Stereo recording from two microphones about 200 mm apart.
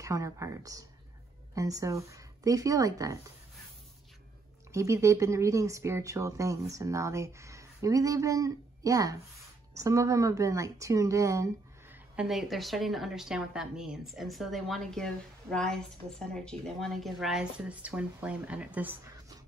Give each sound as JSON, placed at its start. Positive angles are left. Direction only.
{"t": 0.0, "sound": "speech", "side_deg": -15}
{"t": 4.7, "sound": "speech", "side_deg": -15}
{"t": 12.2, "sound": "speech", "side_deg": 0}